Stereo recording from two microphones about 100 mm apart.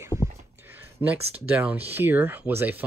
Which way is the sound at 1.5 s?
20° right (ahead or behind).